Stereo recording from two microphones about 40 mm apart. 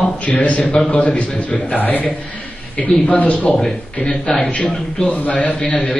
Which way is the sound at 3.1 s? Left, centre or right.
Left.